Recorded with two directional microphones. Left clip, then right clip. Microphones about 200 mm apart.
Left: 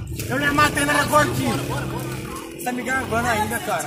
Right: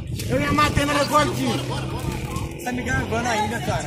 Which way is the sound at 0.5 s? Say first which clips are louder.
Left 2 dB; 20° left (ahead or behind).